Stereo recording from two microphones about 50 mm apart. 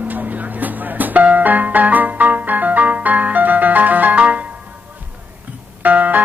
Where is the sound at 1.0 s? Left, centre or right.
Right.